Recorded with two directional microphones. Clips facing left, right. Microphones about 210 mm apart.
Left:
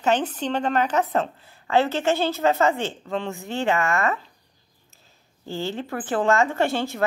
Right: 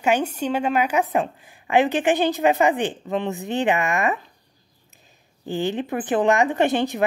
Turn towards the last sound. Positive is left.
turn(degrees=-20)  # may be behind; listen again after turning